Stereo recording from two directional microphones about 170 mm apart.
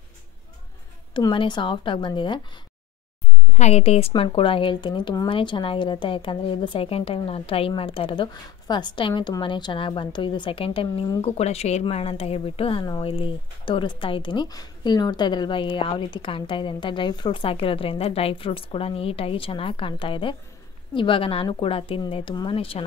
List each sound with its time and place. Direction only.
1.1 s speech: 30° left (ahead or behind)
3.5 s speech: 40° left (ahead or behind)